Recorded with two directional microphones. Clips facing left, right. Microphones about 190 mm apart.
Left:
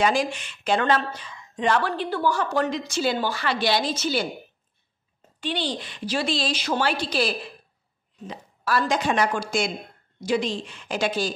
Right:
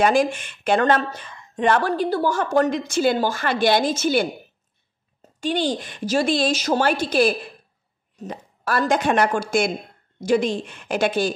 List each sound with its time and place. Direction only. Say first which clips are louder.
0.0 s speech: right 4 dB; 50° right (ahead or behind)
5.4 s a woman's voice: right 6 dB; 45° right (ahead or behind)